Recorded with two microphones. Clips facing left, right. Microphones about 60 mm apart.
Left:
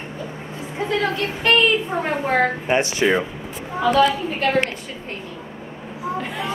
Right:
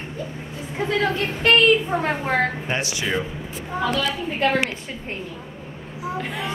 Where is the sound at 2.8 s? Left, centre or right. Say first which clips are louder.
Left 7 dB; left.